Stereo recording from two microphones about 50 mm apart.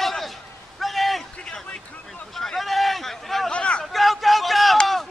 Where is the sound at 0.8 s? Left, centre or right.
Centre.